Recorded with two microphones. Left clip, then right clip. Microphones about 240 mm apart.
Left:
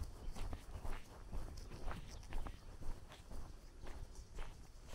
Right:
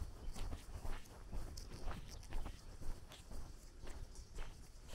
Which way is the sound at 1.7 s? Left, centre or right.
Centre.